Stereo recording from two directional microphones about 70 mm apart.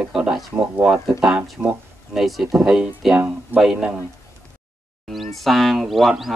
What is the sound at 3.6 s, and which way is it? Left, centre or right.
Speech, centre.